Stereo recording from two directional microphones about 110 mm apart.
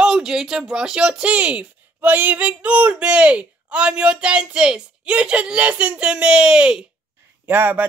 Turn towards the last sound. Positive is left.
turn(degrees=-20)  # may be behind; listen again after turning